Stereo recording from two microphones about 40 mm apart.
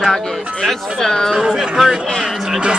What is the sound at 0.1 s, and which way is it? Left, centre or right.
Speech, centre.